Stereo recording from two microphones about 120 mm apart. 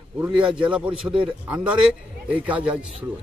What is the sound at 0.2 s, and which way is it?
Speech, 10° right (ahead or behind).